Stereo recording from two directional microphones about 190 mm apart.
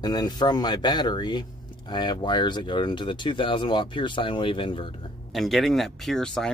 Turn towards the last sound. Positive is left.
turn(degrees=5)  # may be behind; listen again after turning